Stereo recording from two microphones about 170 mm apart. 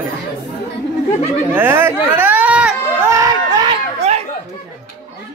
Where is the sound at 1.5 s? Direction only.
15° right (ahead or behind).